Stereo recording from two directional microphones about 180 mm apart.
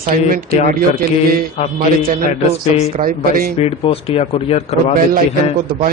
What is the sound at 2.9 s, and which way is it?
Speech, 50° right (ahead or behind).